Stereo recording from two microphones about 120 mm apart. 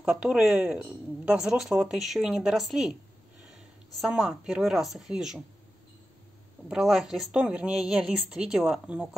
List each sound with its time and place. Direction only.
0.0 s speech: 5° right (ahead or behind)
6.7 s speech: centre (ahead or behind)